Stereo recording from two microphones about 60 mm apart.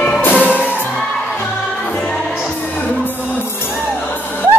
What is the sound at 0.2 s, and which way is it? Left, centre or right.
Music, left.